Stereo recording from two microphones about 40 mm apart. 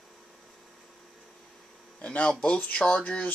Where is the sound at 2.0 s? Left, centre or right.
Left.